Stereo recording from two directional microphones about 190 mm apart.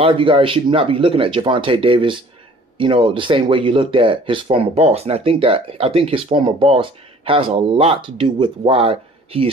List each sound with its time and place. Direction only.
0.0 s speech: 25° right (ahead or behind)